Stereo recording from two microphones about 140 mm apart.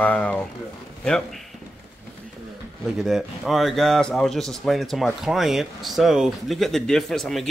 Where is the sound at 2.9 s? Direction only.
Centre (ahead or behind).